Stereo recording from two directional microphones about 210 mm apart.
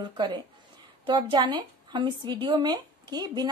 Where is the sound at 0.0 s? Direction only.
20° right (ahead or behind).